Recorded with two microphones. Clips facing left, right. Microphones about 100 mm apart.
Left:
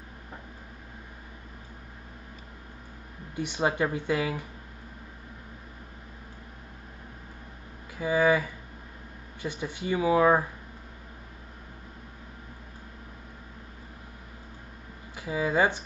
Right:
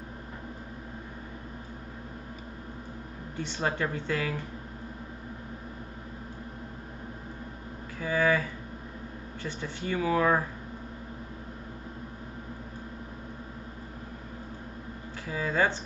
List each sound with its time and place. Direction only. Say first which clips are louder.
3.3 s speech: left 4 dB; 15° left (ahead or behind)
8.0 s speech: left 3 dB; 15° left (ahead or behind)
15.2 s speech: left 3 dB; 15° left (ahead or behind)